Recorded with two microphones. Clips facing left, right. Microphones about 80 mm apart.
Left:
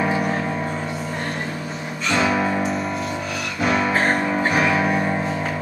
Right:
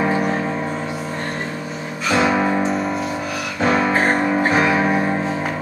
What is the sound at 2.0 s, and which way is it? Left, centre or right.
Music, centre.